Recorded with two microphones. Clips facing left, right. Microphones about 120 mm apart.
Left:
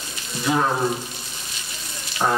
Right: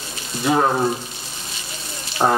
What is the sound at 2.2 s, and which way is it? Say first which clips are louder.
Frying: right 4 dB; 30° right (ahead or behind).